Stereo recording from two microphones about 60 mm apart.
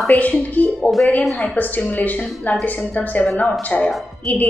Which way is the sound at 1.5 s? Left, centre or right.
Left.